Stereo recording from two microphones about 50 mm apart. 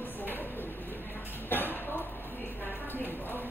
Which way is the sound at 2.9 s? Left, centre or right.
Left.